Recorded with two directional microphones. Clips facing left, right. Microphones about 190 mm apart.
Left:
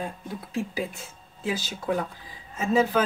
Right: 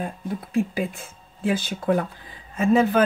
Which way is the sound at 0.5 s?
55° right (ahead or behind).